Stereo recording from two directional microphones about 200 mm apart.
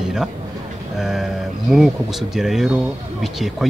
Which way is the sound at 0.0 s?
5° right (ahead or behind).